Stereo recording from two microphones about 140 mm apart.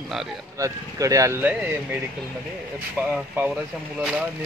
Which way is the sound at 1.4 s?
10° right (ahead or behind).